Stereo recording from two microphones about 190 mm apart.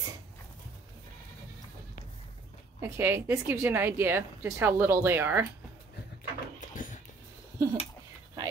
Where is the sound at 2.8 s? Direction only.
10° right (ahead or behind).